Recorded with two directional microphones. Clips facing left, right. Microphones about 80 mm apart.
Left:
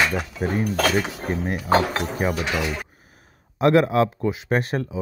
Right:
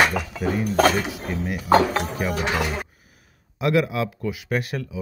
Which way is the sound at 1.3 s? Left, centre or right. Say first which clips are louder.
Left 3 dB; left.